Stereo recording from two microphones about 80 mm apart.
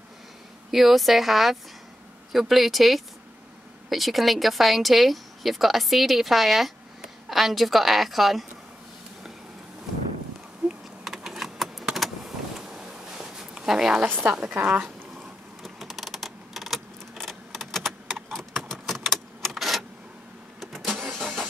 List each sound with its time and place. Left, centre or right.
0.7 s speech: centre
10.6 s a sound: centre
11.1 s typing: centre
12.5 s a sound: centre
14.0 s a woman's voice: right
15.6 s typing: centre
20.6 s vehicle: centre